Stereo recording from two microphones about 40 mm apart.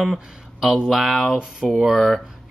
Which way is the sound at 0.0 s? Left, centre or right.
Centre.